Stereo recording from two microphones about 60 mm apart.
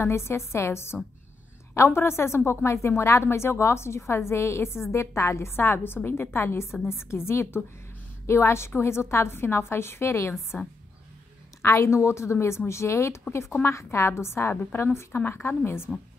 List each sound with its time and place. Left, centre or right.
0.0 s a woman's voice: left
10.5 s a woman's voice: left
11.6 s a woman's voice: left